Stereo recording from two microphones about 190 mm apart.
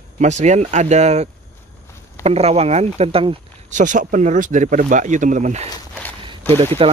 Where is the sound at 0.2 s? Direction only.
40° right (ahead or behind).